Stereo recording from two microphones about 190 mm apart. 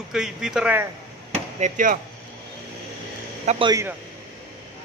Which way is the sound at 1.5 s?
40° right (ahead or behind).